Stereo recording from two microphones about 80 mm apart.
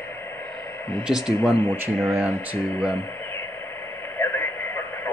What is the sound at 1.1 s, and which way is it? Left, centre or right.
Speech, centre.